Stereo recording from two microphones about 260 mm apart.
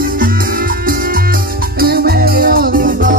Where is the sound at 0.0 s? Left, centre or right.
Right.